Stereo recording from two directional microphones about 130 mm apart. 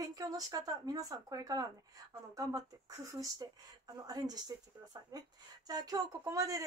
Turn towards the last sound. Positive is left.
turn(degrees=-25)  # may be behind; listen again after turning